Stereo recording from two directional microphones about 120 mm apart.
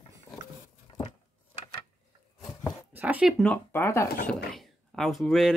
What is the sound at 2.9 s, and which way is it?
Zipper, 15° right (ahead or behind).